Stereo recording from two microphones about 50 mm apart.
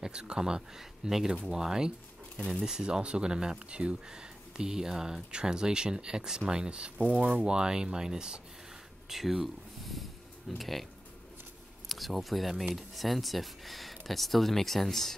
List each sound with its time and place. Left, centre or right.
0.0 s speech: centre
11.9 s speech: centre